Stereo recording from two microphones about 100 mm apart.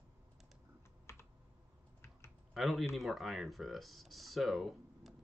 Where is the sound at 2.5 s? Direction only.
Centre (ahead or behind).